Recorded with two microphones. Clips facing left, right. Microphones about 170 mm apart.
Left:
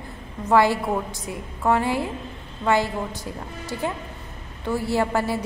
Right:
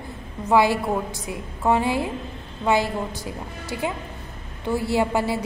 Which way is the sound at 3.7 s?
10° right (ahead or behind).